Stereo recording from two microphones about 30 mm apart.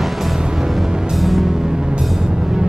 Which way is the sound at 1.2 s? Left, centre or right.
Centre.